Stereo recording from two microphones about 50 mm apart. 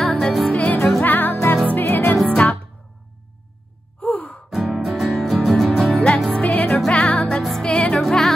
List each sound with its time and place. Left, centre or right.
0.0 s music: centre
0.5 s music: left
1.0 s music: left
2.2 s music: left
4.0 s music: left
4.5 s music: centre
5.9 s music: centre